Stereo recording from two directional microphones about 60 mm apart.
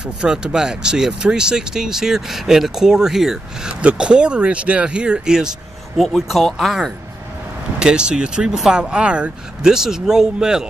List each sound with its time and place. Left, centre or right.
0.0 s speech: centre
5.9 s speech: centre
7.8 s speech: centre